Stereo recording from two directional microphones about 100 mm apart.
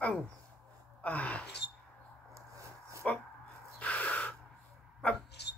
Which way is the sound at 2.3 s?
30° right (ahead or behind).